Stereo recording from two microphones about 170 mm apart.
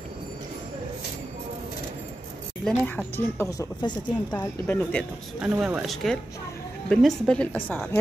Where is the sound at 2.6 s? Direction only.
10° left (ahead or behind).